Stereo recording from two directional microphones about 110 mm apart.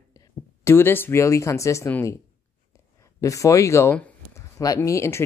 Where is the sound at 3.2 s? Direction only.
30° left (ahead or behind).